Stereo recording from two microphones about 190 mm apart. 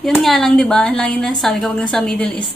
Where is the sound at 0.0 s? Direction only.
Centre (ahead or behind).